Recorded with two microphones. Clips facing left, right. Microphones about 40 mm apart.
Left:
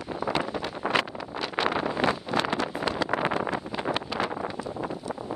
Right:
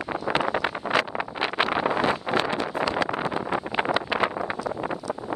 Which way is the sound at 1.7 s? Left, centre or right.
Right.